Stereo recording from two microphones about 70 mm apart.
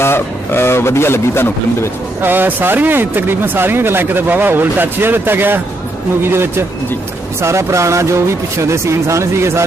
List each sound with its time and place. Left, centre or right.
0.0 s speech: left
2.2 s speech: right